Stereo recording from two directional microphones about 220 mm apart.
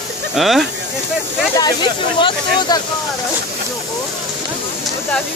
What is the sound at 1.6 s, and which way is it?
Speech, 20° left (ahead or behind).